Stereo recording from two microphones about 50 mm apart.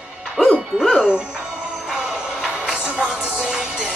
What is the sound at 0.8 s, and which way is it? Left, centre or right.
Speech, centre.